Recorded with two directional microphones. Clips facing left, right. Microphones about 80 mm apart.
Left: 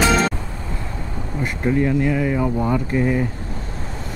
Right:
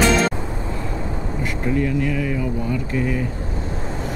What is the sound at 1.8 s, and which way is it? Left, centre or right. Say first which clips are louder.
Speech: left 3 dB; left.